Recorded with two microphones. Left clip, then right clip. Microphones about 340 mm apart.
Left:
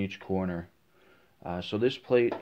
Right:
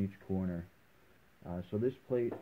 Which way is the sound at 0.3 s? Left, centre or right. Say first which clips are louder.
Left 9 dB; left.